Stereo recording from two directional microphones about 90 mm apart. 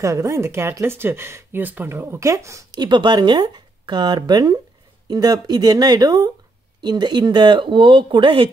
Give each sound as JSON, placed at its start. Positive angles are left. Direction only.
{"t": 0.0, "sound": "speech", "side_deg": -35}
{"t": 2.7, "sound": "speech", "side_deg": -55}